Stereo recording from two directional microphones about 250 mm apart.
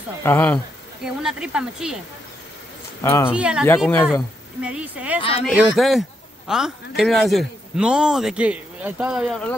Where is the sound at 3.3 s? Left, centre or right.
Centre.